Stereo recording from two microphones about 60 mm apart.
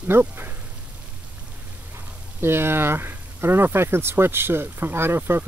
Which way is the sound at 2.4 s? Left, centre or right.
Right.